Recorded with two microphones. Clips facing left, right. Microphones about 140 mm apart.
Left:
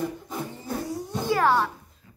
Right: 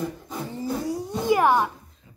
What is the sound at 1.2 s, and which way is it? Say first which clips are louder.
Babbling: right 3 dB; 15° right (ahead or behind).